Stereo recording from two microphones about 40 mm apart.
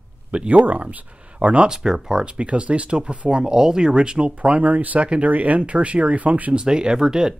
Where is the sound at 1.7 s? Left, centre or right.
Centre.